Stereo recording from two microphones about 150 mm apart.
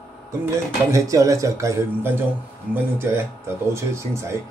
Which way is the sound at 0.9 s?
20° right (ahead or behind).